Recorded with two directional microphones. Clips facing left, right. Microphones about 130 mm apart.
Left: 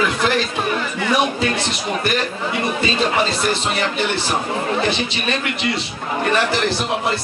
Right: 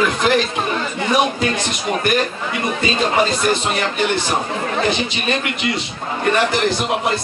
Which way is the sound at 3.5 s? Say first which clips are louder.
Right 1 dB; 20° right (ahead or behind).